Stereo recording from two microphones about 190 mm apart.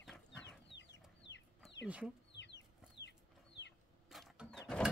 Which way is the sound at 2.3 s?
65° left (ahead or behind).